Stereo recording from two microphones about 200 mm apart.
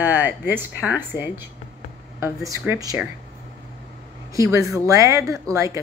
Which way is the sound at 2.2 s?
15° right (ahead or behind).